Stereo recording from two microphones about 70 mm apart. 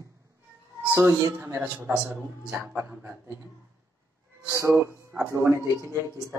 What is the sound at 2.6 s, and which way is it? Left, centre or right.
Speech, right.